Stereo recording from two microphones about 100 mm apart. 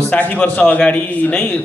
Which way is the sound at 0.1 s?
15° left (ahead or behind).